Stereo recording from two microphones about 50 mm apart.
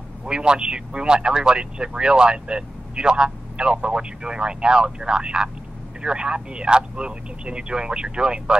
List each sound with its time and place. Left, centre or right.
0.2 s speech: centre